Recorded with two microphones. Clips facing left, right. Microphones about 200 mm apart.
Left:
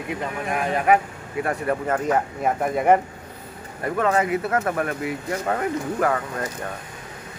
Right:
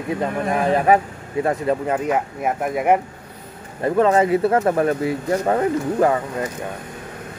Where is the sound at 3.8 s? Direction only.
30° right (ahead or behind).